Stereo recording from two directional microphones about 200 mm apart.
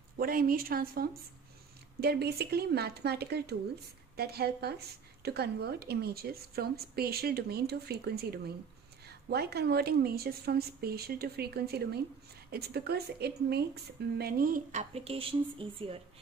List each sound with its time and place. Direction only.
0.2 s a woman's voice: 45° right (ahead or behind); by 16.0 s 25° right (ahead or behind)